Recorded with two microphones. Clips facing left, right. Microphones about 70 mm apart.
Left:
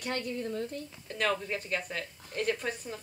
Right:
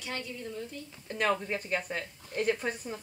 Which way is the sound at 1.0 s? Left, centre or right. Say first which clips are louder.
Right 2 dB; centre.